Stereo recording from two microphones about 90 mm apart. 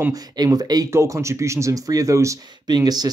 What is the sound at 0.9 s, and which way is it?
Speech, 35° right (ahead or behind).